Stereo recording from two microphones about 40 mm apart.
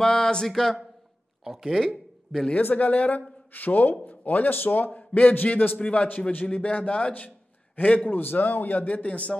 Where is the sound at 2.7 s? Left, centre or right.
Left.